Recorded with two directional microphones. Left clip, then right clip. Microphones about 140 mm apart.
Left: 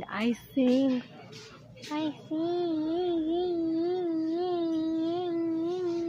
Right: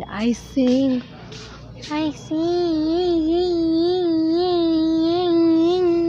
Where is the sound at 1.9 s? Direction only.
10° right (ahead or behind).